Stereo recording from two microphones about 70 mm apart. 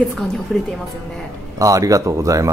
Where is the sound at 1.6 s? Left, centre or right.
Right.